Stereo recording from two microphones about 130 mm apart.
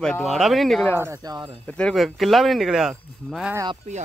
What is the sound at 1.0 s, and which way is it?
Speech, 25° right (ahead or behind).